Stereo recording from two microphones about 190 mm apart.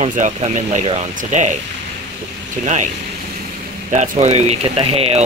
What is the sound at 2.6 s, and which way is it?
Speech, 40° right (ahead or behind).